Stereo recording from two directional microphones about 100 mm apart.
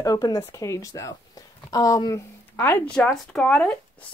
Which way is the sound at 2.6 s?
20° left (ahead or behind).